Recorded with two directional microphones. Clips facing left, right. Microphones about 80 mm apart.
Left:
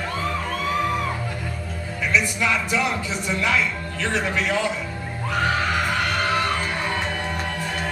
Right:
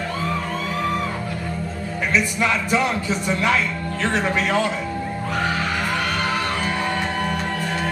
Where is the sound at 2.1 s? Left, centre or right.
Right.